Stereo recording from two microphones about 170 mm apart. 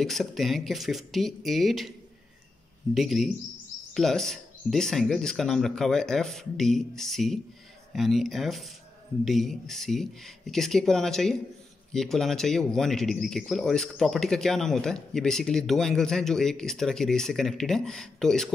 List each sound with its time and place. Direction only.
0.0 s speech: centre (ahead or behind)